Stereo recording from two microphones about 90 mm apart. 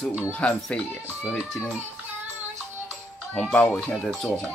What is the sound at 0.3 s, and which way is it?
Speech, 15° left (ahead or behind).